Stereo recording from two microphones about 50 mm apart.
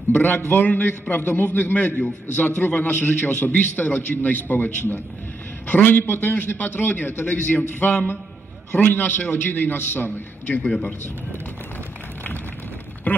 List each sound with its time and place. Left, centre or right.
0.5 s a man's voice: left
6.6 s a man's voice: left
10.6 s a man's voice: centre